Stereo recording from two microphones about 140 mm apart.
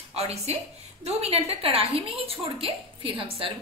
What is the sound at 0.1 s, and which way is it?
A woman's voice, 45° right (ahead or behind).